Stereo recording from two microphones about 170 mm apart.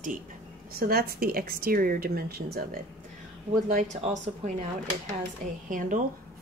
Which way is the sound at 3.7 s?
50° right (ahead or behind).